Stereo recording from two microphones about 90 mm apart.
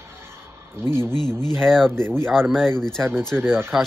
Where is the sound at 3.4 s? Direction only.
25° right (ahead or behind).